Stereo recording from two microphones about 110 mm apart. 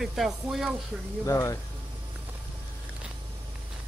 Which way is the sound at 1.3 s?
30° left (ahead or behind).